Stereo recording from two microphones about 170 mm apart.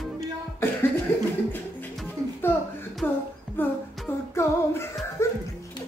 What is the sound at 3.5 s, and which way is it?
Music, 15° left (ahead or behind).